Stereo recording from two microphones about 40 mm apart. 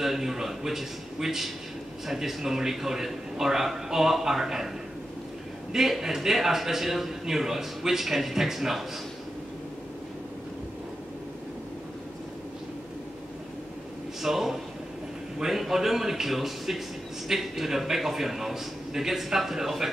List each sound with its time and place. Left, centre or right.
0.0 s a man's voice: centre
5.7 s a man's voice: centre
14.2 s a man's voice: centre